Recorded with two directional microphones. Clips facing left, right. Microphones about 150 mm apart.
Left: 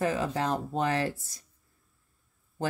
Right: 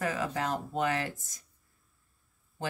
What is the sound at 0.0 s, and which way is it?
Speech, 30° left (ahead or behind).